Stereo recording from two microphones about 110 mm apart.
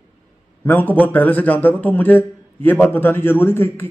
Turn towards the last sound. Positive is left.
turn(degrees=20)  # may be behind; listen again after turning